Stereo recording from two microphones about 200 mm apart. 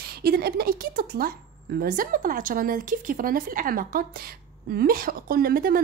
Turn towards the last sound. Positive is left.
turn(degrees=-50)  # may be behind; listen again after turning